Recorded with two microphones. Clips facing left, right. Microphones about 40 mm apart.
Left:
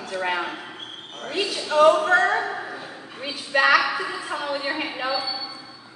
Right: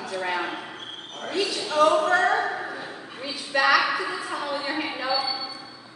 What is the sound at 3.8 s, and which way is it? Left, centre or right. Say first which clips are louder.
Speech: even; centre.